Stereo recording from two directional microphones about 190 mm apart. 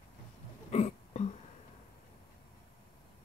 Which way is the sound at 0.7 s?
35° left (ahead or behind).